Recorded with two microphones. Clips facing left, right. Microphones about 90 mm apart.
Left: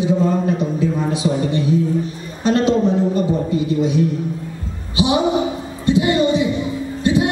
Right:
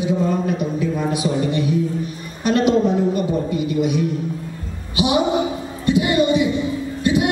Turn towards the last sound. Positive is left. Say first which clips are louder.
# left 1 dB
turn(degrees=25)  # may be behind; listen again after turning